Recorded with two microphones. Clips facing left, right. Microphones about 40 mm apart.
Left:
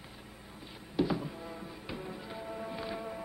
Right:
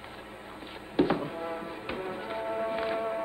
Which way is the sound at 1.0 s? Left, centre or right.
Right.